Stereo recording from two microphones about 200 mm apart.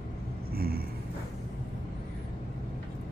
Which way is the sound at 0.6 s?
50° right (ahead or behind).